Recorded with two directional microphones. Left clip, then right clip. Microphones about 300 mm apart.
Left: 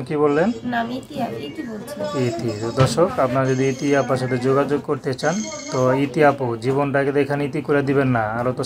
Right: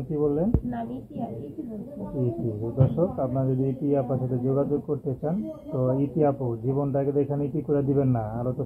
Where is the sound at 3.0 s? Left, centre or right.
Left.